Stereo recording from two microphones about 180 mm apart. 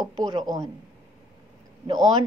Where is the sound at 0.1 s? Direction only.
25° right (ahead or behind).